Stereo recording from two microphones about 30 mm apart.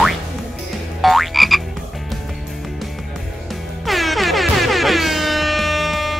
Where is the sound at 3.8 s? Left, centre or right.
Centre.